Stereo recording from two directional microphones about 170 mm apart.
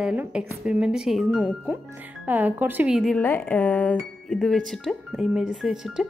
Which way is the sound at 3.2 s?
10° left (ahead or behind).